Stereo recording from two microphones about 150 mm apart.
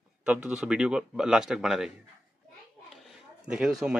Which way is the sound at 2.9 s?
5° right (ahead or behind).